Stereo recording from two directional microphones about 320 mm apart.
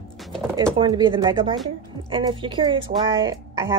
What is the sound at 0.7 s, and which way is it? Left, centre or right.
Speech, centre.